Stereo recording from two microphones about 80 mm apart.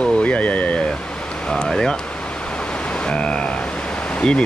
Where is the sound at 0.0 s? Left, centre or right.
Centre.